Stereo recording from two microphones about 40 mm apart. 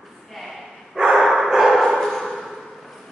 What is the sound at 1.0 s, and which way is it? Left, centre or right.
Dog, centre.